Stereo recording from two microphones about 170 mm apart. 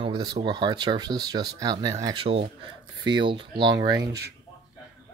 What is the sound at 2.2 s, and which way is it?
Speech, 35° right (ahead or behind).